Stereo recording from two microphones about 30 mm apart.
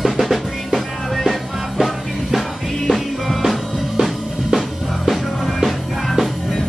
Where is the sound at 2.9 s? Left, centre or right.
Right.